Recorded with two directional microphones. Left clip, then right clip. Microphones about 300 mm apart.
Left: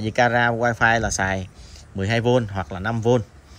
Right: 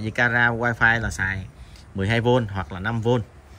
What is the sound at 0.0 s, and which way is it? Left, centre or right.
A man's voice, centre.